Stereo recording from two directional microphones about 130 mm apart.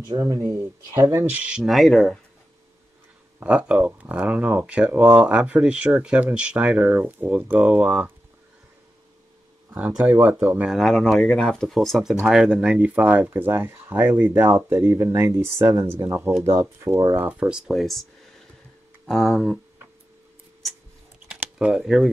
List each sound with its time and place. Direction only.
0.1 s speech: 25° right (ahead or behind)
1.3 s speech: 10° right (ahead or behind)
1.6 s speech: centre (ahead or behind)
3.3 s speech: 10° right (ahead or behind)
9.8 s speech: 10° right (ahead or behind)
16.2 s speech: 5° right (ahead or behind)
16.4 s speech: 20° right (ahead or behind); by 19.6 s 5° left (ahead or behind)
21.3 s shuffling cards: 10° right (ahead or behind)